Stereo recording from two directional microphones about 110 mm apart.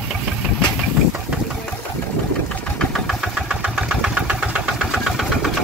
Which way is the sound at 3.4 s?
10° right (ahead or behind).